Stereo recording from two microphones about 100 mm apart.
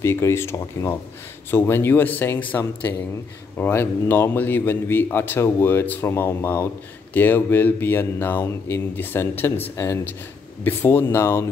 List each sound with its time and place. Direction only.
0.0 s a man's voice: 25° left (ahead or behind)